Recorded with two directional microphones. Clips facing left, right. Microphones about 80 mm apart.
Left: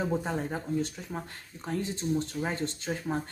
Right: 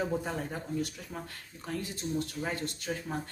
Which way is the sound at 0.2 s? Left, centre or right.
Left.